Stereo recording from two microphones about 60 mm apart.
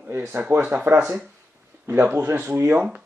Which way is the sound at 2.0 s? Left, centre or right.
Right.